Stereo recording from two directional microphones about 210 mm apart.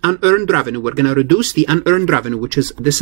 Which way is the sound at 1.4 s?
65° right (ahead or behind).